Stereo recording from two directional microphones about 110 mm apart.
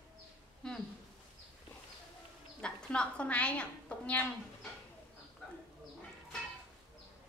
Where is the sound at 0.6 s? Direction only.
5° left (ahead or behind).